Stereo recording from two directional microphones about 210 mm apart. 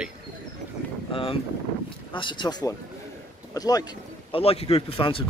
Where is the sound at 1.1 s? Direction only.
25° left (ahead or behind).